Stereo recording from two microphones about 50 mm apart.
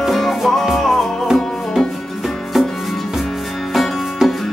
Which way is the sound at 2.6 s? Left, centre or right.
Centre.